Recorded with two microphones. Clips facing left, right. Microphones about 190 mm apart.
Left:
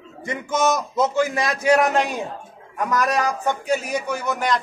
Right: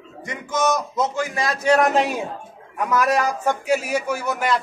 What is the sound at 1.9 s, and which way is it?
Speech, 5° right (ahead or behind).